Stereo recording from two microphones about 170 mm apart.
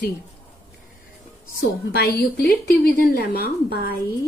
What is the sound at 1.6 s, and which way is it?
A woman's voice, 80° left.